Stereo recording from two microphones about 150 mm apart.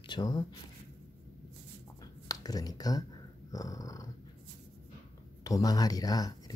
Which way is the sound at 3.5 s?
25° left (ahead or behind).